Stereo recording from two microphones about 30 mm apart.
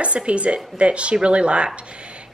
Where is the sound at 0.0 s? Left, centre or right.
Right.